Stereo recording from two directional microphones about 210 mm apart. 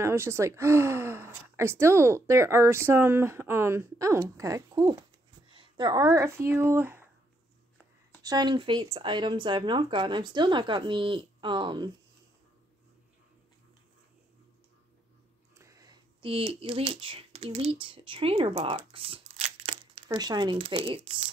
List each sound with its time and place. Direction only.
0.0 s a woman's voice: 10° right (ahead or behind)
8.2 s speech: 20° right (ahead or behind)
15.5 s speech: 15° right (ahead or behind)